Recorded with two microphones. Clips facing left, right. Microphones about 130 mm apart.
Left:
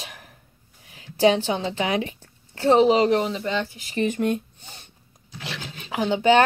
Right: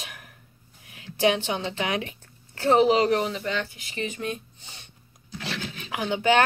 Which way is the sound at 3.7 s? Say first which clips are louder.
Left 8 dB; 45° left (ahead or behind).